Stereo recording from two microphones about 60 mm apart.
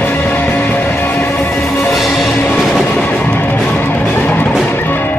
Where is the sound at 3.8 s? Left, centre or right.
Left.